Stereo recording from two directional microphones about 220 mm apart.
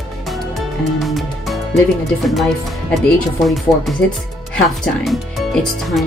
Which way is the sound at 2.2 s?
Centre (ahead or behind).